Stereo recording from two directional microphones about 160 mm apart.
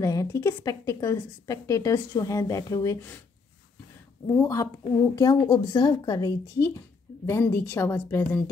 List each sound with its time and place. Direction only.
0.0 s speech: 20° left (ahead or behind)
4.4 s a woman's voice: 20° left (ahead or behind)